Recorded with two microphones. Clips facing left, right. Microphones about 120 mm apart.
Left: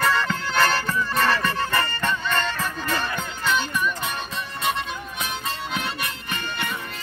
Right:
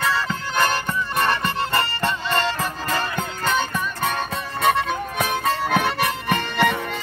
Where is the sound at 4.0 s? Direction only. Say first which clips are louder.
Right 5 dB; 55° right (ahead or behind).